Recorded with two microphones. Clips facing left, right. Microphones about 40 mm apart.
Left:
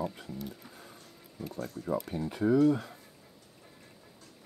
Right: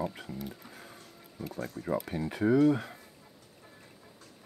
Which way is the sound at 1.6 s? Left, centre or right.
Right.